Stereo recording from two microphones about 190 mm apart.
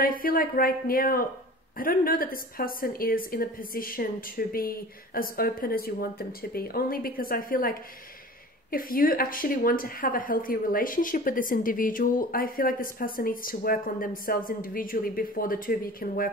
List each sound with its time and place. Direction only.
0.2 s speech: 50° left (ahead or behind)